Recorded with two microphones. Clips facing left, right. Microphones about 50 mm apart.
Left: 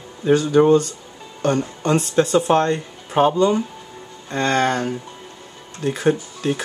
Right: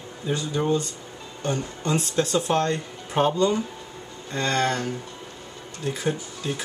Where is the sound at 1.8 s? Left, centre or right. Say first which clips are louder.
Left 5 dB; left.